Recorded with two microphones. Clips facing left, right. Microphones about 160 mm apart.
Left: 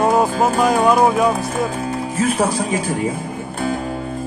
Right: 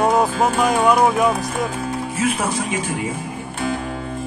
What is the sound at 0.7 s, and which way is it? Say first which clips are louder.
Music: left 2 dB; 30° left (ahead or behind).